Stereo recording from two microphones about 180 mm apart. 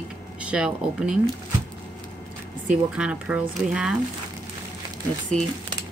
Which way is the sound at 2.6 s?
5° right (ahead or behind).